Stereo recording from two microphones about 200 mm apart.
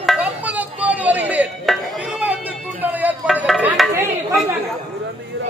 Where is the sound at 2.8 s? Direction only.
10° right (ahead or behind).